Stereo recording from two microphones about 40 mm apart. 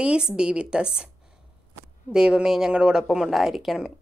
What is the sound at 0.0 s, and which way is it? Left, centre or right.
Speech, right.